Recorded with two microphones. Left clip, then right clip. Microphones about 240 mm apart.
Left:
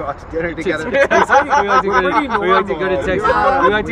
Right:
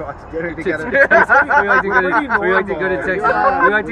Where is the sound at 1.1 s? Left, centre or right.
Left.